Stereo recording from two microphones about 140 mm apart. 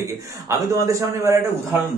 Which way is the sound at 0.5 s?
20° right (ahead or behind).